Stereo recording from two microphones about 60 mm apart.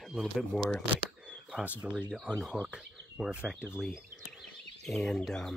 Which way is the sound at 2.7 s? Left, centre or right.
Centre.